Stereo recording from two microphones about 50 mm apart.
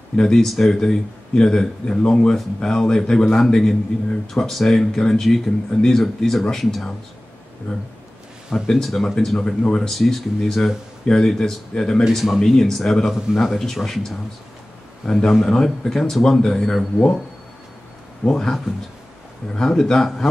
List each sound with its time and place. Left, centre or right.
0.1 s speech: centre
7.7 s speech: centre
8.6 s speech: centre
9.4 s speech: centre
12.1 s speech: centre
12.4 s speech: centre
18.2 s speech: centre